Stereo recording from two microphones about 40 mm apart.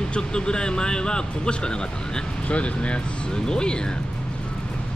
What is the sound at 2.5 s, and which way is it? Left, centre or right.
Speech, left.